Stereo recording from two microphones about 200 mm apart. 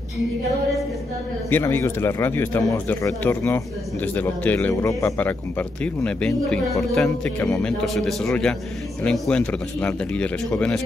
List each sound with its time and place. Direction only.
1.5 s speech: 10° left (ahead or behind)